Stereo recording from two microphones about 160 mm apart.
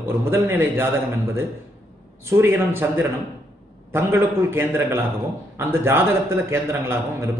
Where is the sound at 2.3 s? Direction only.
15° right (ahead or behind).